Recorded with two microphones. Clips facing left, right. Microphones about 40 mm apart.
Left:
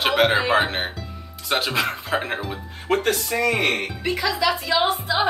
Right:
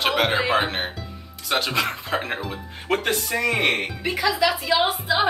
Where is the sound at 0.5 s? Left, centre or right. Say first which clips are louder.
Left 2 dB; centre.